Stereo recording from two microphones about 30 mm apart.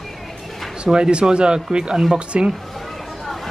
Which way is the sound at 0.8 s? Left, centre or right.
Right.